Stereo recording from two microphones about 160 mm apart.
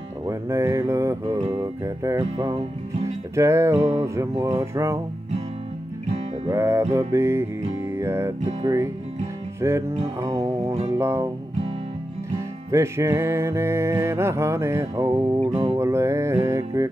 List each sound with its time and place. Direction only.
0.3 s speech: 20° right (ahead or behind)
3.3 s music: 15° right (ahead or behind)
4.0 s speech: 20° right (ahead or behind)
6.5 s music: 15° right (ahead or behind)
8.6 s speech: 20° right (ahead or behind)
9.6 s music: 15° right (ahead or behind)
9.9 s music: 40° right (ahead or behind)
11.0 s music: 15° right (ahead or behind)
12.7 s music: 15° right (ahead or behind)
15.4 s music: 40° right (ahead or behind)
15.8 s music: 20° right (ahead or behind)